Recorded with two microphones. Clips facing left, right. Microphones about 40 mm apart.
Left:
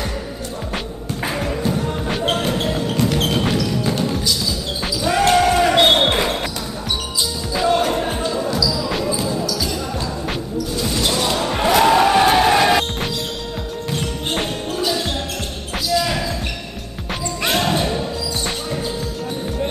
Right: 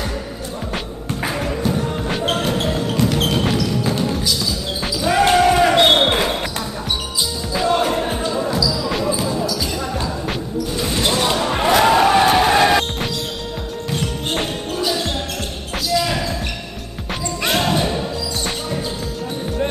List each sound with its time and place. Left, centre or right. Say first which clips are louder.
1.2 s music: even; centre
4.8 s basketball bounce: right 1 dB; centre
7.5 s music: even; centre
8.6 s basketball bounce: right 1 dB; centre
10.8 s basketball bounce: right 2 dB; centre
11.3 s music: left 2 dB; centre
14.3 s music: left 1 dB; centre
17.1 s music: even; centre